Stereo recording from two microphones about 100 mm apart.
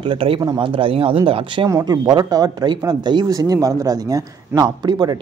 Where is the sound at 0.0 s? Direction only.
60° right (ahead or behind).